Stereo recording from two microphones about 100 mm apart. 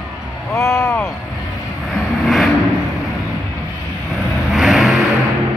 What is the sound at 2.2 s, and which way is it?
Vehicle, centre (ahead or behind).